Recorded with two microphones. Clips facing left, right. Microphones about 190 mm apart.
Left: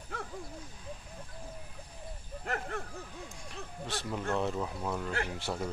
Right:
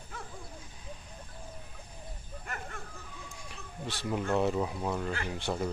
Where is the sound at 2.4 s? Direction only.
65° left (ahead or behind).